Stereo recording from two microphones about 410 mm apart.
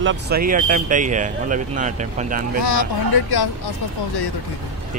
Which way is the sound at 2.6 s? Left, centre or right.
Left.